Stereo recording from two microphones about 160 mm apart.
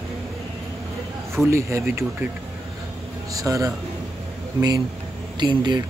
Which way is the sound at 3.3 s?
20° right (ahead or behind).